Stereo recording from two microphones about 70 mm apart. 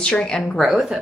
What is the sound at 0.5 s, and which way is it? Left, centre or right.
Speech, centre.